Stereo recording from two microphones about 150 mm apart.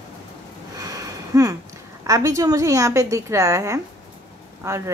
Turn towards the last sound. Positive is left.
turn(degrees=-20)  # may be behind; listen again after turning